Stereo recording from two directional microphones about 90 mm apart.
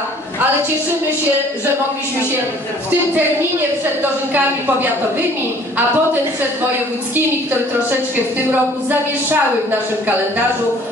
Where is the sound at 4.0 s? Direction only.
20° right (ahead or behind).